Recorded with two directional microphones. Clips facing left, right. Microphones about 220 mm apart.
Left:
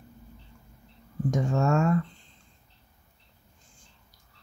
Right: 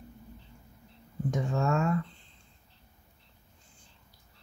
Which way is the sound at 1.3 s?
45° left (ahead or behind).